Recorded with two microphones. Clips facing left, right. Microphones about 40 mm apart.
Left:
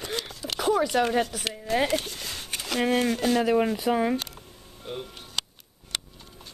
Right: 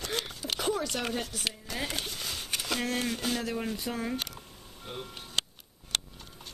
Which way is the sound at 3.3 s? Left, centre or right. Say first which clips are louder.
Left 10 dB; left.